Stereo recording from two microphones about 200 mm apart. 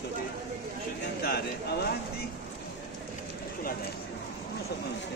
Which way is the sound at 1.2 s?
50° left (ahead or behind).